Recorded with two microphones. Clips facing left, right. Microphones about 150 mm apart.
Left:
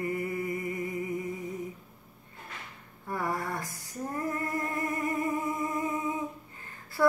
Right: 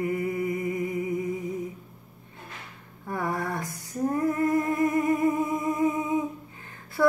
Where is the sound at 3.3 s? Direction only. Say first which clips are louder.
Right 4 dB; 20° right (ahead or behind).